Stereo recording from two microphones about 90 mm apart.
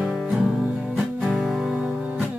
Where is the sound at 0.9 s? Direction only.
5° right (ahead or behind).